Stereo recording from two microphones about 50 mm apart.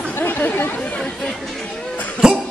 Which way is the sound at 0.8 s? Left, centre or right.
Centre.